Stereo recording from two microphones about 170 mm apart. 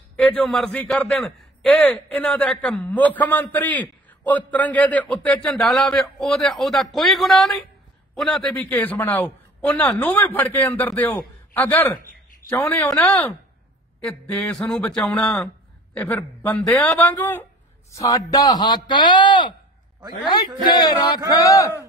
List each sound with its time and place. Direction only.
0.1 s a man's voice: 10° left (ahead or behind)
14.0 s a man's voice: 10° left (ahead or behind)